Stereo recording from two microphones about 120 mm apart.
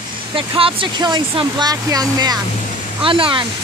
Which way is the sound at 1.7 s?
30° right (ahead or behind).